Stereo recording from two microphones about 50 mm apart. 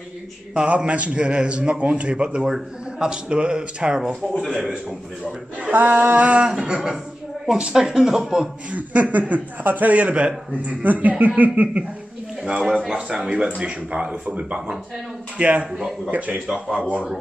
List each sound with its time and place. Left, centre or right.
0.6 s speech: right
5.6 s a man's voice: right
6.4 s speech: centre
8.7 s a man's voice: right
12.9 s speech: centre
16.4 s speech: centre